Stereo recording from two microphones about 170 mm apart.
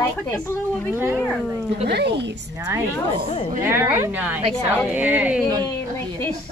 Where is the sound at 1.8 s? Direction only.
80° right.